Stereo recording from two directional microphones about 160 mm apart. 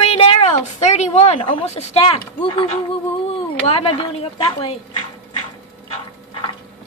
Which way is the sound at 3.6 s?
35° left (ahead or behind).